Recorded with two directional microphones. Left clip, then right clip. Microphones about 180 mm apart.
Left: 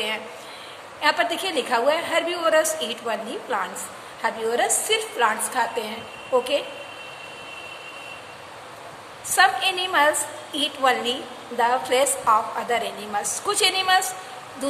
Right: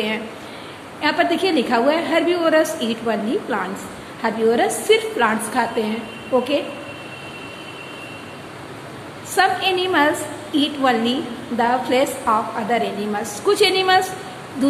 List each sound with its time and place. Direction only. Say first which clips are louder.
1.0 s a woman's voice: right 4 dB; 20° left (ahead or behind)
9.3 s a woman's voice: right 1 dB; 20° left (ahead or behind)